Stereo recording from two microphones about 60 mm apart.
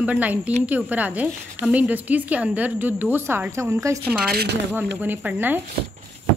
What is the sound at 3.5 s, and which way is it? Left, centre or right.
Speech, right.